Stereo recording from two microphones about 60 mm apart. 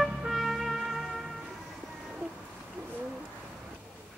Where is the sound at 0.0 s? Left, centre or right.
Centre.